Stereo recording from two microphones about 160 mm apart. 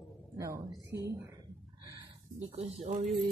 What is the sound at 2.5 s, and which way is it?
Speech, 45° right (ahead or behind).